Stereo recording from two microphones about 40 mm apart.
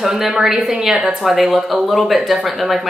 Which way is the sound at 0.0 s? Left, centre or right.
Centre.